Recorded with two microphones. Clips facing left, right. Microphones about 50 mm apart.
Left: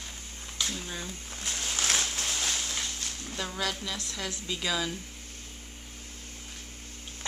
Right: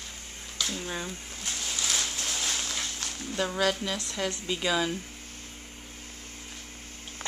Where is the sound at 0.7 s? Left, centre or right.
Centre.